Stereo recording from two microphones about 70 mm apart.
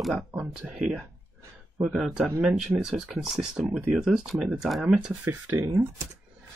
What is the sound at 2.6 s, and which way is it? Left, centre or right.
Speech, centre.